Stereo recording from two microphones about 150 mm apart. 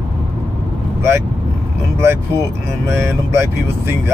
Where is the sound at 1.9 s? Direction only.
15° right (ahead or behind).